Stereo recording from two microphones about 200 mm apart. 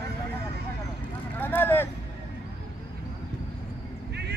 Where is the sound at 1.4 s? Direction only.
10° left (ahead or behind).